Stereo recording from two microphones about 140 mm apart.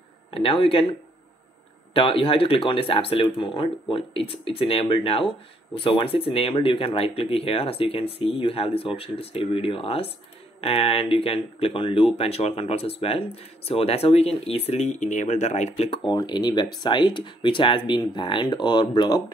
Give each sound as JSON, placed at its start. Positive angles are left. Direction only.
{"t": 0.3, "sound": "speech", "side_deg": 40}
{"t": 2.0, "sound": "speech", "side_deg": 40}